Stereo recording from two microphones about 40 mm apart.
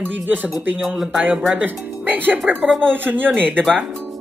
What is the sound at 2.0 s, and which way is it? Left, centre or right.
Speech, right.